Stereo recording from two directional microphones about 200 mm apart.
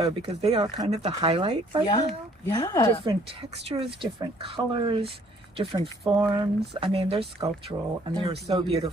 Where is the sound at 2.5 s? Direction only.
20° left (ahead or behind).